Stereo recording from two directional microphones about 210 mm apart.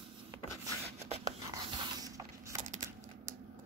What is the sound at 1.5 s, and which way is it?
Biting, 15° right (ahead or behind).